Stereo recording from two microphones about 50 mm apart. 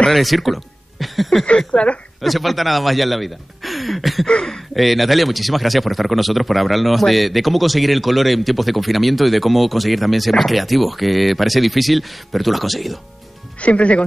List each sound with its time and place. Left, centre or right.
0.1 s speech: centre
1.7 s speech: left
2.2 s speech: centre
13.6 s speech: left